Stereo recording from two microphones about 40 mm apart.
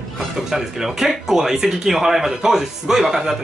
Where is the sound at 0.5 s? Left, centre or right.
Centre.